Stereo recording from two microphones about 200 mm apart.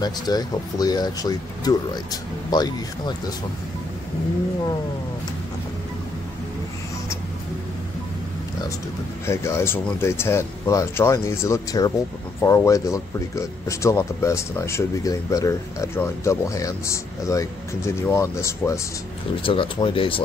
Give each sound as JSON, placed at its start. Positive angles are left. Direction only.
{"t": 0.0, "sound": "speech", "side_deg": 20}
{"t": 9.2, "sound": "speech", "side_deg": 15}
{"t": 19.4, "sound": "speech", "side_deg": 25}